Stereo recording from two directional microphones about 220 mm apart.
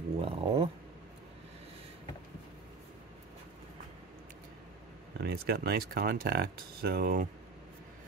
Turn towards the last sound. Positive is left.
turn(degrees=-45)  # may be behind; listen again after turning